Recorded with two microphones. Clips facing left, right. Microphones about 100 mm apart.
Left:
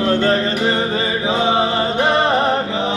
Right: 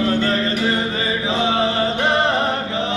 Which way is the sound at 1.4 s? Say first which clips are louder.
Left 1 dB; 30° left (ahead or behind).